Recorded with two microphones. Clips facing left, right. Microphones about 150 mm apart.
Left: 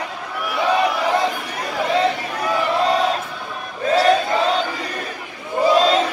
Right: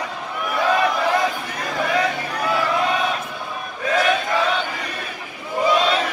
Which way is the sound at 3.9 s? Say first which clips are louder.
Left 4 dB; 35° left (ahead or behind).